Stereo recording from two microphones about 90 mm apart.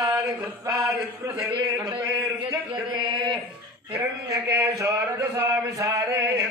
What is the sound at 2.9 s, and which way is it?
Speech, 65° right (ahead or behind).